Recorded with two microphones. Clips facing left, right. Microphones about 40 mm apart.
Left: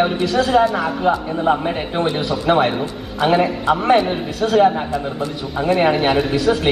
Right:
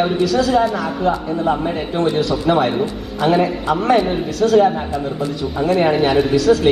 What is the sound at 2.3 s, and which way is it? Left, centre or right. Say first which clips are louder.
Speech: even; centre.